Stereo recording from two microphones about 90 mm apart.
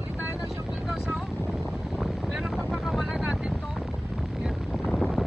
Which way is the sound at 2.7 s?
5° right (ahead or behind).